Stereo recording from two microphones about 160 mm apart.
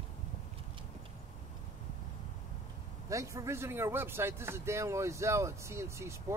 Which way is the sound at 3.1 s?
20° right (ahead or behind).